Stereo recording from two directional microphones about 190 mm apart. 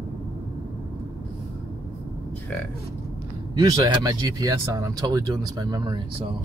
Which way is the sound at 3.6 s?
20° right (ahead or behind).